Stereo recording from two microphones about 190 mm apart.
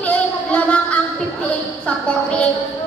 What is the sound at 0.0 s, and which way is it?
Music, 10° left (ahead or behind).